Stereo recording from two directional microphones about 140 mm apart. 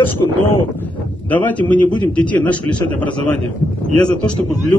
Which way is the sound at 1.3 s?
10° left (ahead or behind).